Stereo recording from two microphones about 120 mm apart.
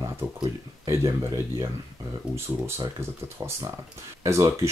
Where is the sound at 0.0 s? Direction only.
30° right (ahead or behind).